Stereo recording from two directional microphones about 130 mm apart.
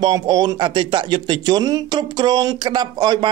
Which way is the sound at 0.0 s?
35° right (ahead or behind).